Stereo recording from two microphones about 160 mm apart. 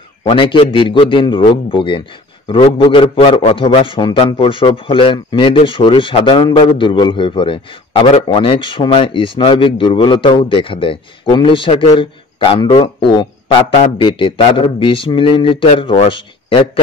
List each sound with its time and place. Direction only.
0.2 s a man's voice: 35° left (ahead or behind)